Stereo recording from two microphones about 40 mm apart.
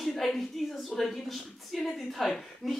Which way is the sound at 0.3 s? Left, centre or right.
Centre.